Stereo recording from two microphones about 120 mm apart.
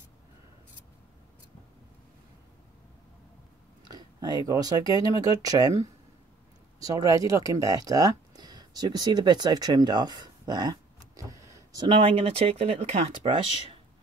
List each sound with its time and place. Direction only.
3.9 s speech: 35° right (ahead or behind)
6.8 s speech: 30° right (ahead or behind); by 13.3 s 60° right (ahead or behind)